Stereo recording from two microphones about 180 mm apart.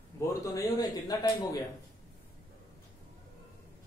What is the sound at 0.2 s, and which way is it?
A man's voice, 20° left (ahead or behind).